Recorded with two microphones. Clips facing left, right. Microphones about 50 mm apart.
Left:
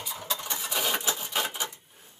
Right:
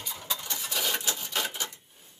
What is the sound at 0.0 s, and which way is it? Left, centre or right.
Rub, centre.